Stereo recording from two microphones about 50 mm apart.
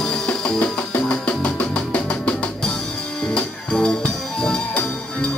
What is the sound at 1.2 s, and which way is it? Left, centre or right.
Music, left.